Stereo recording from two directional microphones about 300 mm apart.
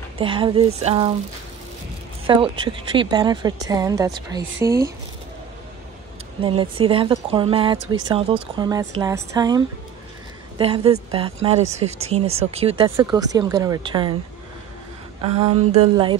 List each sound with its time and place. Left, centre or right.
0.2 s a woman's voice: centre
2.2 s speech: centre
6.4 s speech: centre
10.6 s a woman's voice: centre
15.2 s a woman's voice: centre